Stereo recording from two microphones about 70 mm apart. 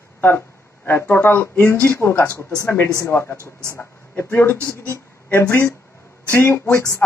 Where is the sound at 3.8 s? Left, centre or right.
Left.